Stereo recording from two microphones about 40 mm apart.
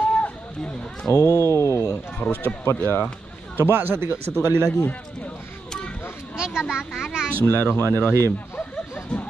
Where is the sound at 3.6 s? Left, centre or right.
Right.